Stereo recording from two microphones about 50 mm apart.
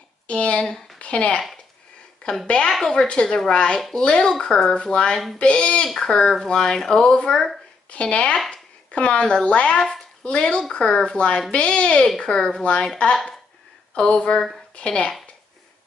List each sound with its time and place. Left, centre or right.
0.3 s speech: left
2.4 s a woman's voice: centre
7.3 s a woman's voice: centre
7.9 s speech: left
9.8 s a woman's voice: centre
10.2 s a woman's voice: left